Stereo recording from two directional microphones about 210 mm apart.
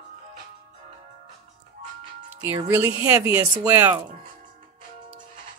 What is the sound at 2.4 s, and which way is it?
Speech, 10° right (ahead or behind).